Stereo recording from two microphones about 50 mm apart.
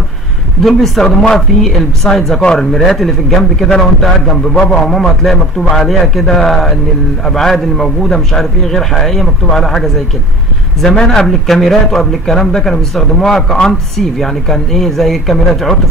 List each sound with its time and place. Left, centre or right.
0.7 s a man's voice: centre
1.0 s a man's voice: centre
1.6 s a man's voice: centre